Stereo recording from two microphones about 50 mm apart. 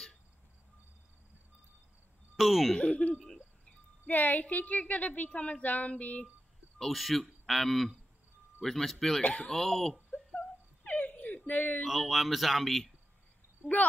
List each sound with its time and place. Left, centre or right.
2.3 s speech: centre
2.8 s speech: left
4.0 s a woman's voice: left
6.9 s speech: centre
9.2 s speech: left
9.5 s speech: centre
10.3 s whimper: left
11.8 s speech: centre